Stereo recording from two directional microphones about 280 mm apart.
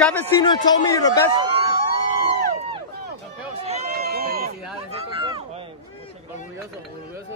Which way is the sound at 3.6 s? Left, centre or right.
Right.